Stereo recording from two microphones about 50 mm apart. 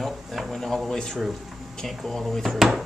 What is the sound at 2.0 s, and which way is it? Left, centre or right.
Speech, centre.